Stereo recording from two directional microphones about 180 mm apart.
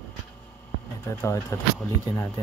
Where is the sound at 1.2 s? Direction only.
15° left (ahead or behind).